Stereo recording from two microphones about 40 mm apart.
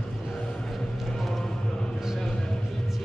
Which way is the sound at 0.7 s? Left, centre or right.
Centre.